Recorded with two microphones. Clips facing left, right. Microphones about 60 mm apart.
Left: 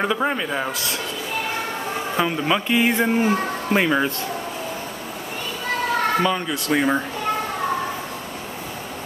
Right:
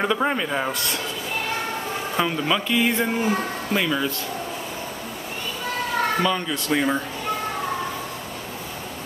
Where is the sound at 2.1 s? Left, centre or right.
Centre; by 4.1 s left.